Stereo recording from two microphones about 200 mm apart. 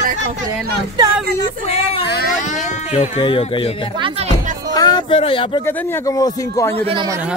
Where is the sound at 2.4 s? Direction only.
35° left (ahead or behind).